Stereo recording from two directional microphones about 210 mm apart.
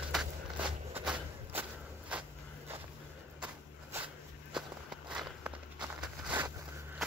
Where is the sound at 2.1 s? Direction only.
5° right (ahead or behind).